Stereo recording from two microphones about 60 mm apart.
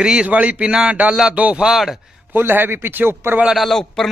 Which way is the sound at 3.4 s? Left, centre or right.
Centre.